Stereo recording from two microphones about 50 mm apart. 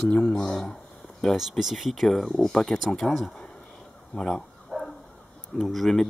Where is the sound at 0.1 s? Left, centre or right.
Centre.